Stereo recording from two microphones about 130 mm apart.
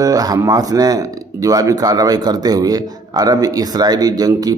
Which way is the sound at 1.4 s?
25° right (ahead or behind).